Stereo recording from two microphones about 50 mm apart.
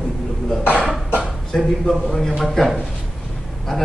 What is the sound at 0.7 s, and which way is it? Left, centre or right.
Cough, centre.